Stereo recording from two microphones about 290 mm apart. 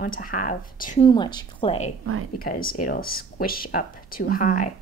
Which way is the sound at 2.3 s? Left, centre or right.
Left.